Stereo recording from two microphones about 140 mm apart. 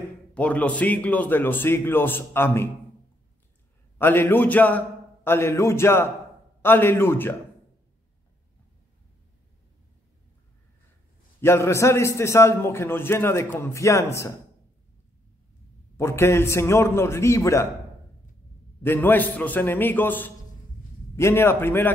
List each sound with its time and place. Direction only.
0.3 s a man's voice: 10° left (ahead or behind)
4.0 s a man's voice: 15° left (ahead or behind)
11.4 s a man's voice: 20° left (ahead or behind)
16.0 s a man's voice: 20° left (ahead or behind)
18.8 s a man's voice: 15° left (ahead or behind)